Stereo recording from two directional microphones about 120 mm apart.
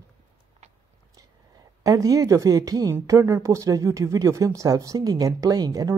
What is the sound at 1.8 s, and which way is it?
A woman's voice, 30° right (ahead or behind).